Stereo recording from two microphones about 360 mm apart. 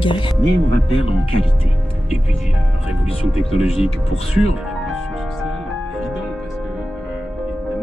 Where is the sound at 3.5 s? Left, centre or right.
Centre.